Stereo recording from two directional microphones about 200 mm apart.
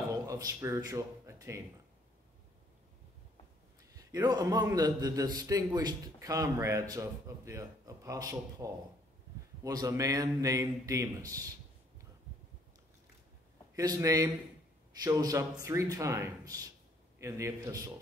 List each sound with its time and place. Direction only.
0.1 s speech: 15° right (ahead or behind)
4.1 s a man's voice: 20° right (ahead or behind)
13.7 s a man's voice: 15° right (ahead or behind)